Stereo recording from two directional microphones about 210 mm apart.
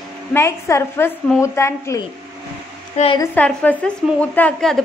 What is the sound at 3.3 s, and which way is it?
A woman's voice, 10° left (ahead or behind).